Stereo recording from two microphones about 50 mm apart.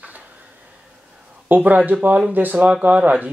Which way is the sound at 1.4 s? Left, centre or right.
Right.